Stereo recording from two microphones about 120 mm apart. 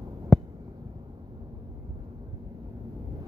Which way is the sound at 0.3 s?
Centre (ahead or behind).